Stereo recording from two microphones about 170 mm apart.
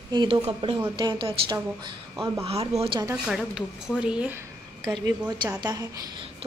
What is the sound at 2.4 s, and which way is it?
Speech, 35° right (ahead or behind).